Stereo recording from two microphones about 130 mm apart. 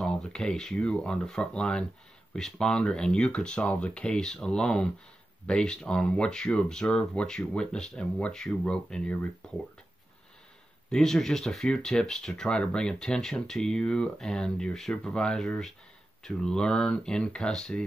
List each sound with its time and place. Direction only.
0.0 s speech: 5° left (ahead or behind)
10.9 s speech: 5° left (ahead or behind)